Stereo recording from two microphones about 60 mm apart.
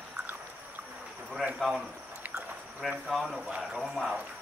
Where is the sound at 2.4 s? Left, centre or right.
Centre.